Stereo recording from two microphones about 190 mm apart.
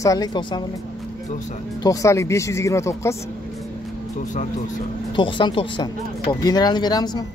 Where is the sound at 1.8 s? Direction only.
15° left (ahead or behind).